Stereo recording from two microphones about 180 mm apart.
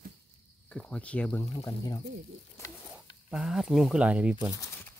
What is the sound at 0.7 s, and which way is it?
Speech, 5° left (ahead or behind).